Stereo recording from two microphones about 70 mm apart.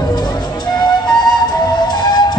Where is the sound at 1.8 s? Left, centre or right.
Left.